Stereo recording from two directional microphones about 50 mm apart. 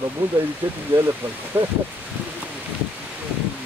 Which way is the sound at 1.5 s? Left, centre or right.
Right.